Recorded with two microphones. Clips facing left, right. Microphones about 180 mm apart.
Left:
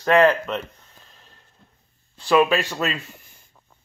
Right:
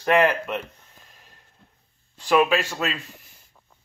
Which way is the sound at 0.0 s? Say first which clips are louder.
Left 3 dB; 15° right (ahead or behind).